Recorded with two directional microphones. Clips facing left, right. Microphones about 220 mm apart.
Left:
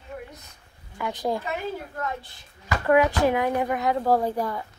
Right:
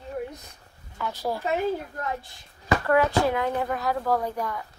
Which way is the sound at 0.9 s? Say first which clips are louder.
Left 2 dB; 15° left (ahead or behind).